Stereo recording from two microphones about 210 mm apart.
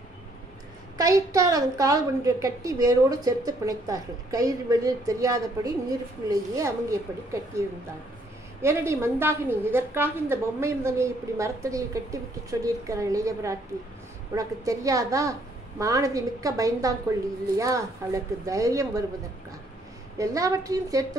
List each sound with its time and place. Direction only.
0.9 s a woman's voice: 15° right (ahead or behind)
20.2 s a woman's voice: 15° right (ahead or behind)